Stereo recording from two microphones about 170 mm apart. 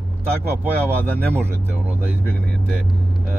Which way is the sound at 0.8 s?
15° right (ahead or behind).